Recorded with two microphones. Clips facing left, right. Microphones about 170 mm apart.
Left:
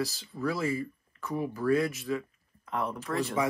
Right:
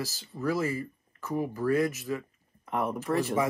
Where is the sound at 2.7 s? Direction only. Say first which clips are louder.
Right 3 dB; 20° right (ahead or behind).